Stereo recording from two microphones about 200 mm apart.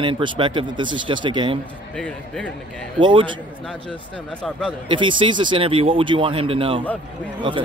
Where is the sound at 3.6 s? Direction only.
5° left (ahead or behind).